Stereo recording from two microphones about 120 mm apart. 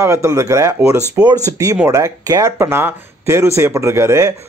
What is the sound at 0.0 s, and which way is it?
Speech, 25° right (ahead or behind).